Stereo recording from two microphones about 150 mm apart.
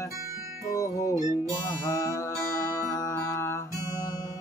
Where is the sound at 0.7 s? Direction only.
20° left (ahead or behind).